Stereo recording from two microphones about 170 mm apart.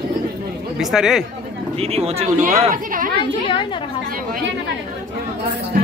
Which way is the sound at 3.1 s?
30° left (ahead or behind).